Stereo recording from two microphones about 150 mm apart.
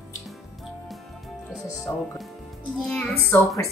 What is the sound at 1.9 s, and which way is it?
Speech, 5° left (ahead or behind).